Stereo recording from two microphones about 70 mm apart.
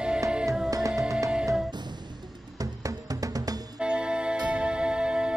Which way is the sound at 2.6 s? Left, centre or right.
Right.